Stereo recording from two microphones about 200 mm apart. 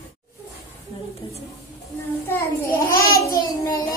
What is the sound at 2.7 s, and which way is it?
Child singing, 15° left (ahead or behind).